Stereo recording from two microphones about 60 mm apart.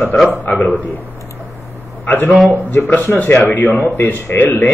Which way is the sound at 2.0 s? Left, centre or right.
Left.